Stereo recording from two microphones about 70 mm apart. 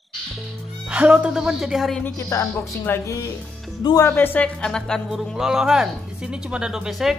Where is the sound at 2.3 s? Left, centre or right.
Left.